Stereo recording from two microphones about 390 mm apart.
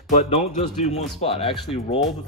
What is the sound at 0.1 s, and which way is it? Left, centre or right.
Speech, centre.